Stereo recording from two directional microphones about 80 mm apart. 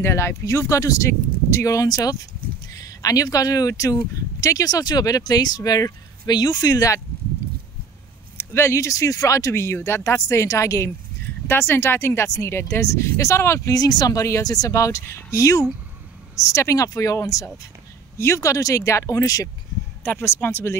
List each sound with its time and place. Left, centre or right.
0.0 s speech: left
8.4 s speech: left
13.7 s speech: left
14.2 s speech: left
20.0 s speech: left